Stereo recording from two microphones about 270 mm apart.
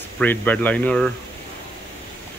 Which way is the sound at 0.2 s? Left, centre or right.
Centre.